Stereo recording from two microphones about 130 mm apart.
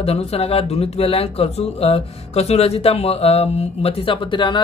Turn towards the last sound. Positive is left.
turn(degrees=40)  # may be behind; listen again after turning